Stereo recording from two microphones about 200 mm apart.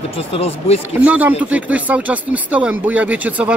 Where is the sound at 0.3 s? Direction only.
30° left (ahead or behind).